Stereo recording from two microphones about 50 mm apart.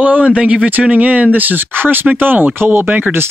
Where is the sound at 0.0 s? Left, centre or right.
Right.